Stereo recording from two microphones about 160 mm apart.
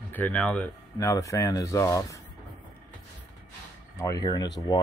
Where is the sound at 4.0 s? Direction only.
25° left (ahead or behind).